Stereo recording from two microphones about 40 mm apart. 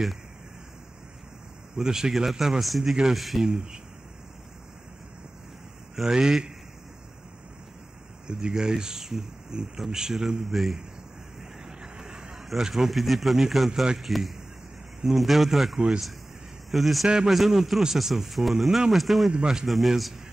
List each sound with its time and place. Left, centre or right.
1.8 s a man's voice: centre
3.2 s speech: centre
3.4 s speech: centre
5.9 s a man's voice: centre
8.3 s a man's voice: right; by 10.8 s centre
12.0 s a sound: centre
12.4 s speech: centre
19.3 s speech: centre
19.6 s speech: centre